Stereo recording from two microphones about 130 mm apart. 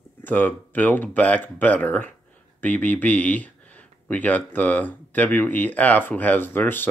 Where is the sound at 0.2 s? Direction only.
15° left (ahead or behind).